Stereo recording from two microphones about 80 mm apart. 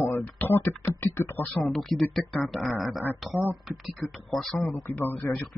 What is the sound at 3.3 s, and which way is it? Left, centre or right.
Speech, right.